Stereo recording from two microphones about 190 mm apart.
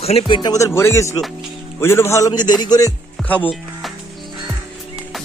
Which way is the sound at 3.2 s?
10° left (ahead or behind).